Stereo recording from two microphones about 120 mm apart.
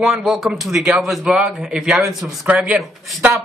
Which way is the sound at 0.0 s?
5° right (ahead or behind).